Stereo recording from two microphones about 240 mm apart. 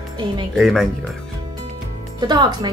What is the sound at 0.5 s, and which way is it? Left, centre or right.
Speech, centre.